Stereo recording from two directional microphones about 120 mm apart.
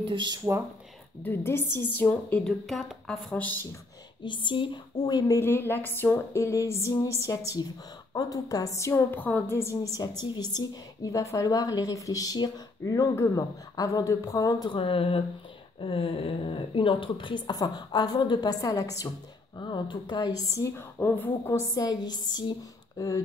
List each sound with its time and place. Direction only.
0.0 s speech: 40° right (ahead or behind)
1.2 s a woman's voice: 20° left (ahead or behind)
4.2 s speech: 40° left (ahead or behind)
5.0 s speech: 35° left (ahead or behind)
5.4 s a sound: 20° left (ahead or behind)
9.9 s speech: 35° left (ahead or behind)
13.1 s a sound: 25° left (ahead or behind)
14.8 s speech: 50° left (ahead or behind); by 19.0 s 30° left (ahead or behind)
19.6 s speech: 40° left (ahead or behind); by 21.3 s 15° left (ahead or behind)
21.5 s a sound: 20° left (ahead or behind)
21.8 s speech: 35° left (ahead or behind)